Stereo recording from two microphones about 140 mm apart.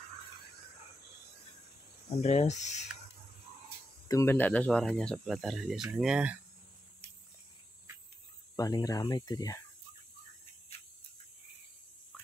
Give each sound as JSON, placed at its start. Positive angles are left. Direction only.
{"t": 2.0, "sound": "speech", "side_deg": 55}
{"t": 4.1, "sound": "speech", "side_deg": 15}
{"t": 8.5, "sound": "speech", "side_deg": 25}